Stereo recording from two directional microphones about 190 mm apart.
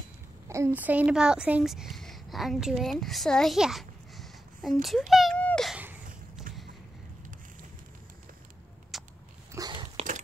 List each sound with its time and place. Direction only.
0.5 s speech: 15° right (ahead or behind)
4.8 s a sound: centre (ahead or behind)
8.9 s biting: centre (ahead or behind)
9.5 s dog: 20° right (ahead or behind)